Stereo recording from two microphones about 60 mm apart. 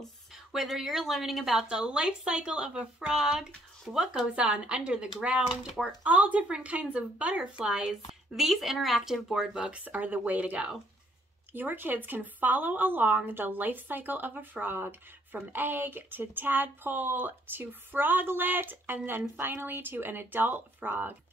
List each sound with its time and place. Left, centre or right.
0.0 s a woman's voice: centre
9.8 s speech: right
11.5 s speech: right